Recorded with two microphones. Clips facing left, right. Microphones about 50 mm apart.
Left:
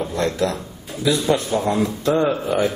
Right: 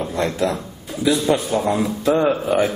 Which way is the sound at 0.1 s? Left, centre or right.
Centre.